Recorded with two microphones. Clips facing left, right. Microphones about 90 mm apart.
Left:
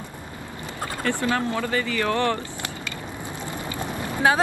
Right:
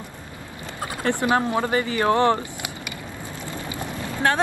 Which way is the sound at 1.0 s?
20° right (ahead or behind).